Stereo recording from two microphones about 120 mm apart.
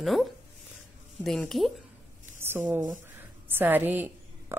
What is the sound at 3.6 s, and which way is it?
A woman's voice, 15° right (ahead or behind).